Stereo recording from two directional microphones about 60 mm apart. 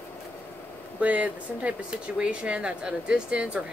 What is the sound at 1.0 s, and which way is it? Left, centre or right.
Speech, right.